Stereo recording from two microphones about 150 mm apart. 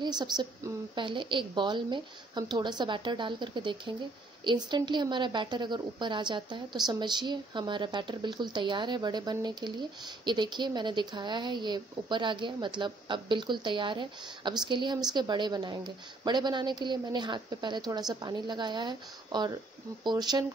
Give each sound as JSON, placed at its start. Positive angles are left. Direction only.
{"t": 0.0, "sound": "a woman's voice", "side_deg": -30}